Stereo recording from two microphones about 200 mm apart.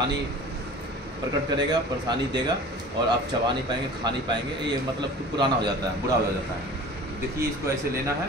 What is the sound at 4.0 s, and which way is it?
Speech, 20° right (ahead or behind).